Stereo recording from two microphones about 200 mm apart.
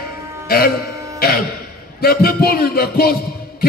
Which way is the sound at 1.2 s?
50° left (ahead or behind).